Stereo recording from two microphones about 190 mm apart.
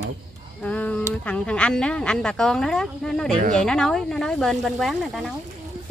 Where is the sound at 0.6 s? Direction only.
5° left (ahead or behind).